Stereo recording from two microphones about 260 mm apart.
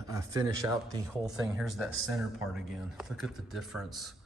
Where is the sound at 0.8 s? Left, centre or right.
Centre.